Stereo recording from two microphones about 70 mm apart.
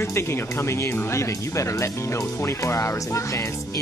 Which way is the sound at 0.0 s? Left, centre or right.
Left.